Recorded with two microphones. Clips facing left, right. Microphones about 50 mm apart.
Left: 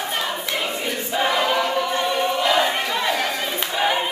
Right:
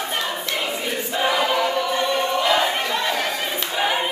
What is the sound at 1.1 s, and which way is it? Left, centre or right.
Choir, centre.